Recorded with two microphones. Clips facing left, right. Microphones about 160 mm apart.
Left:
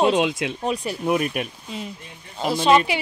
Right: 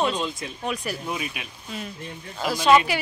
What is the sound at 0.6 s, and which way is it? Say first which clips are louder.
Speech: left 2 dB; 30° left (ahead or behind).